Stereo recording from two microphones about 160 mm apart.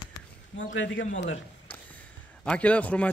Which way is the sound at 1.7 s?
10° left (ahead or behind).